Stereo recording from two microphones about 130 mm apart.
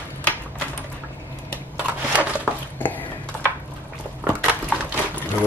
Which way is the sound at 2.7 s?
15° left (ahead or behind).